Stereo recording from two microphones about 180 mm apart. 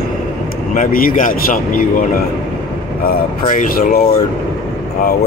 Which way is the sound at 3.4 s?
50° left (ahead or behind).